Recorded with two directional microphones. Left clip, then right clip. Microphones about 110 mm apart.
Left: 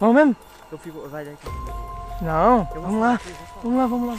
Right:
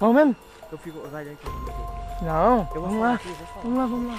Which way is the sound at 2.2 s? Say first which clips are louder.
Left 3 dB; 30° left (ahead or behind).